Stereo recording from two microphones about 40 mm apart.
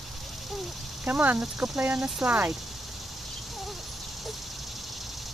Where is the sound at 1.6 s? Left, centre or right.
Centre.